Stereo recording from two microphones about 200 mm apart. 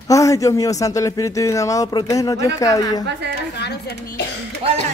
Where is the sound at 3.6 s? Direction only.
55° left (ahead or behind).